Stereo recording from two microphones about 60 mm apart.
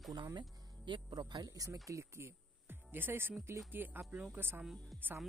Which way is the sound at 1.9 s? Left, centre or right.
Right.